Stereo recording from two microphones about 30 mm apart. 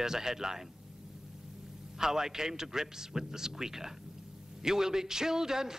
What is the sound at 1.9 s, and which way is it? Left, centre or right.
A man's voice, centre.